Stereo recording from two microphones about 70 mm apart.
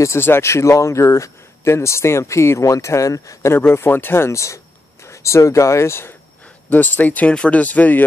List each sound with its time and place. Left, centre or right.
0.0 s speech: left
3.5 s speech: left
6.7 s speech: left